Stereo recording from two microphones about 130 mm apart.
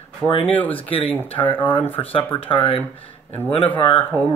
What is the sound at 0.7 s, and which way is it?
Speech, 45° left (ahead or behind).